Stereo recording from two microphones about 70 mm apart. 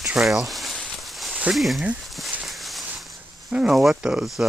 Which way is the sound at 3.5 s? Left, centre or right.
Centre.